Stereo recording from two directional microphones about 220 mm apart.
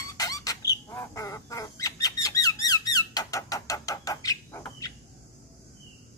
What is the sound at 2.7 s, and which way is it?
Squeak, 15° left (ahead or behind).